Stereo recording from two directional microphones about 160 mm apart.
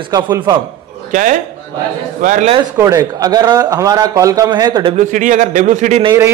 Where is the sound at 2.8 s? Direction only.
20° right (ahead or behind).